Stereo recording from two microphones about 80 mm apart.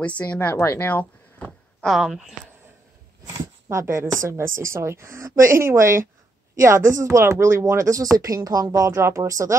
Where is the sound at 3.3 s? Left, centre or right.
Right.